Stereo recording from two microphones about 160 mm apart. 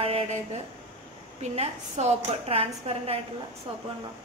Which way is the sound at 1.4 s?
45° right (ahead or behind).